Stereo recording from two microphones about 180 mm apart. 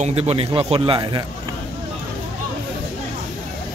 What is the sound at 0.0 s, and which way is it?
Speech, 35° right (ahead or behind).